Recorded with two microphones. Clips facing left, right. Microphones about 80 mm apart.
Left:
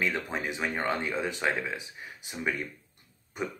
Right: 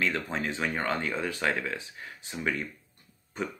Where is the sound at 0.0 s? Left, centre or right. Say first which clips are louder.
Right 1 dB; centre.